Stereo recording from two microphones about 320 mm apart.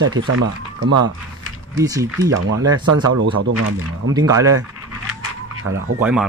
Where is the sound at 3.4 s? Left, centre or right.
Right.